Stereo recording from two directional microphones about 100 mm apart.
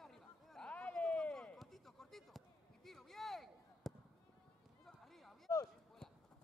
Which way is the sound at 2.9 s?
5° left (ahead or behind).